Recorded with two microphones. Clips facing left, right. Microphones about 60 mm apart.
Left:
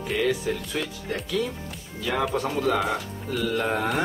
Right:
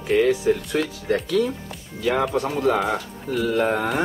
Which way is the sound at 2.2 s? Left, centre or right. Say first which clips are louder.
Right 3 dB; centre.